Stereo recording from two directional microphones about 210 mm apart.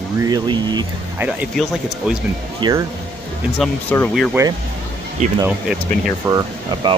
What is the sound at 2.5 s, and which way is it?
Speech, 20° right (ahead or behind).